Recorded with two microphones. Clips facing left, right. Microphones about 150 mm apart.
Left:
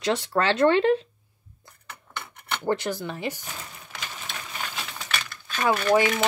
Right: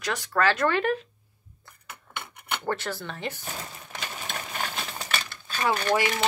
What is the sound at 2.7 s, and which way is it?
Speech, 15° left (ahead or behind).